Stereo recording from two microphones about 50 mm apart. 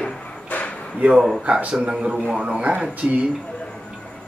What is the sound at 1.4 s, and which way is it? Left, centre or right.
Speech, right.